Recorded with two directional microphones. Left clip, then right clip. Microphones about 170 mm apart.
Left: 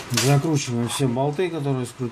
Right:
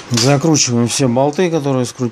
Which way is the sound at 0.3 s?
55° right (ahead or behind).